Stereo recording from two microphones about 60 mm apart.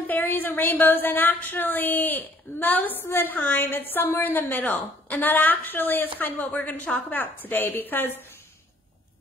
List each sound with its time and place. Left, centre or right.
0.0 s a woman's voice: left